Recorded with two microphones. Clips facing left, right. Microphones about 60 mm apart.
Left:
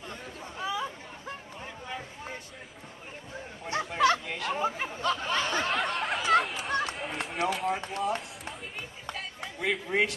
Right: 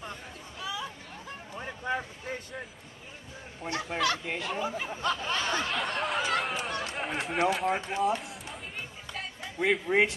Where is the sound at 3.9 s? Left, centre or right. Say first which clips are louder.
Left 5 dB; left.